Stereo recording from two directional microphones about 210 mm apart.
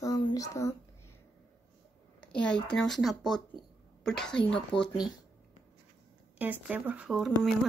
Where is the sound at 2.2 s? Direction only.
5° left (ahead or behind).